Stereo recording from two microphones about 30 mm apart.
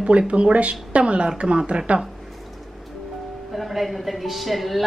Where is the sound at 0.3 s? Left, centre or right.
Right.